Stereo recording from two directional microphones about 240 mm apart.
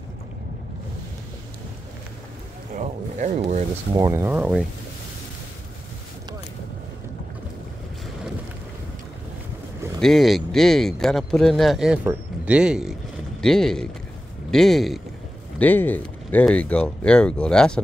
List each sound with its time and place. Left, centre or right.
2.7 s speech: right
3.9 s speech: centre
9.9 s speech: centre